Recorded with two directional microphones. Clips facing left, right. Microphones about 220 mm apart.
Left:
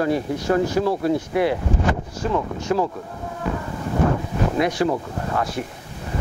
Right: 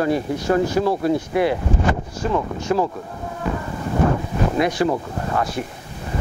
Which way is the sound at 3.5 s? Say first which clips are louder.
Right 1 dB; 25° right (ahead or behind).